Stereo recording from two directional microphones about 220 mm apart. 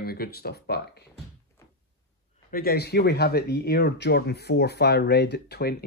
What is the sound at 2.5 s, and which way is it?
Speech, 45° left (ahead or behind).